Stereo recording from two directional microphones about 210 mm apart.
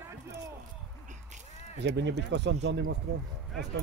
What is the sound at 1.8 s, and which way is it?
Speech, 55° right (ahead or behind).